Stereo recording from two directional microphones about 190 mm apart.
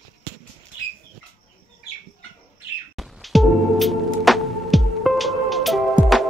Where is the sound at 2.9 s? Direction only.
Centre (ahead or behind).